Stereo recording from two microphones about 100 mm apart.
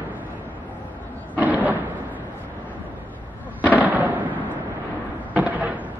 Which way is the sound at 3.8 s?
15° right (ahead or behind).